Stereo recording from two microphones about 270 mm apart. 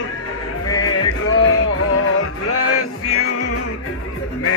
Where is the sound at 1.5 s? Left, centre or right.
Left.